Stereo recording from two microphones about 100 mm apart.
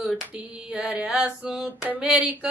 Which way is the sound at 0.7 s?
10° right (ahead or behind).